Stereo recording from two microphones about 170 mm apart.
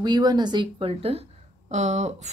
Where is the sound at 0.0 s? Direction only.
25° right (ahead or behind).